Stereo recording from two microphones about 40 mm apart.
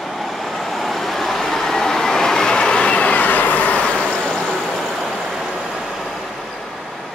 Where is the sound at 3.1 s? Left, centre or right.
Left.